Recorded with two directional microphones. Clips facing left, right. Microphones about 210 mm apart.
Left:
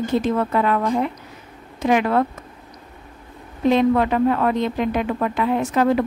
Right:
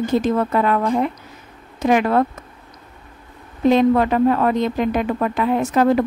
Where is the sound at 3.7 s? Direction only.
40° right (ahead or behind).